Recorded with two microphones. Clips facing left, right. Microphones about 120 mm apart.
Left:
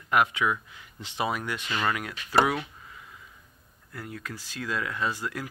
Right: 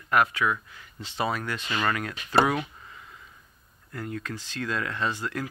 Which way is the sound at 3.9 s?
10° left (ahead or behind).